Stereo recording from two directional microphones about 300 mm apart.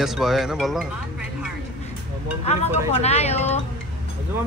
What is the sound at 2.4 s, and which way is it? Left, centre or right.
Speech, left.